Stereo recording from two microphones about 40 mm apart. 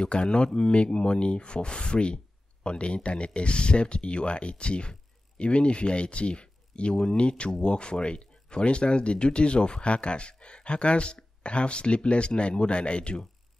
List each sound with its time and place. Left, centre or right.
0.0 s speech: left